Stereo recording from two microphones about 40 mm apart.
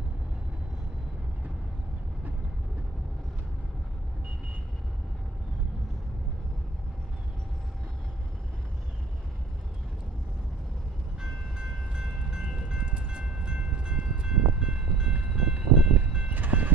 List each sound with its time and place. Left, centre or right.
11.1 s train: right
15.5 s music: right
16.3 s music: right